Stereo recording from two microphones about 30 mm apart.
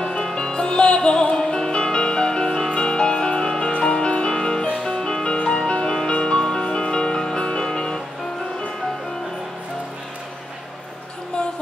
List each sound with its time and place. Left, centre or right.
0.2 s music: left